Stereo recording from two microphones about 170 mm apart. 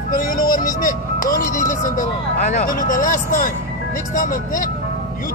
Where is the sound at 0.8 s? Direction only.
55° left (ahead or behind).